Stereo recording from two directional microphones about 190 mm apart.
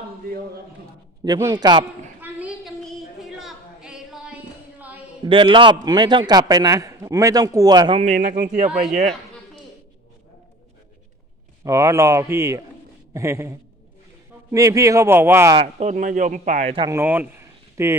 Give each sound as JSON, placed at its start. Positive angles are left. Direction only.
{"t": 1.2, "sound": "a man's voice", "side_deg": -20}
{"t": 2.2, "sound": "a sound", "side_deg": -5}
{"t": 2.8, "sound": "female singing", "side_deg": -5}
{"t": 5.2, "sound": "a man's voice", "side_deg": -25}
{"t": 8.0, "sound": "a man's voice", "side_deg": -40}
{"t": 11.6, "sound": "speech", "side_deg": -15}
{"t": 15.5, "sound": "a man's voice", "side_deg": -35}
{"t": 16.7, "sound": "speech", "side_deg": -15}